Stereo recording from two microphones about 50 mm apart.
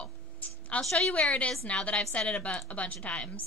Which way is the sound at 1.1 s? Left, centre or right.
Left.